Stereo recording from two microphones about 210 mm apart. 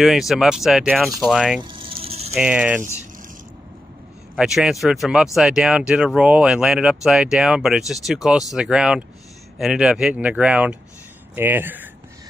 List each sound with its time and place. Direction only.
0.0 s speech: centre (ahead or behind)
1.6 s vehicle: 25° right (ahead or behind)
2.3 s speech: 5° right (ahead or behind)
4.4 s speech: centre (ahead or behind)